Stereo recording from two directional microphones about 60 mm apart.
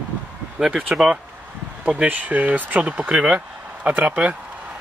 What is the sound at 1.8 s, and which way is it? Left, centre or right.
Speech, right.